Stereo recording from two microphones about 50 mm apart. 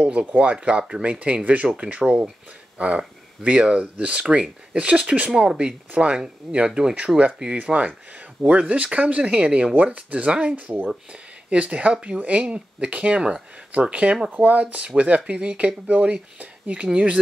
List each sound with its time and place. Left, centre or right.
0.0 s speech: right
3.4 s speech: right
7.5 s speech: right